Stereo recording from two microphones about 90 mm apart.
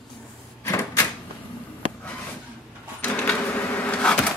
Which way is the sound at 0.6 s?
30° left (ahead or behind).